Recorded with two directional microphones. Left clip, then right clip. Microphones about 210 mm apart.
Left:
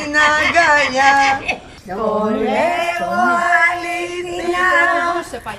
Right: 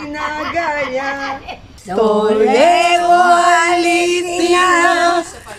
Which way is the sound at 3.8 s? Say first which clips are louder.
Right 8 dB; 50° right (ahead or behind).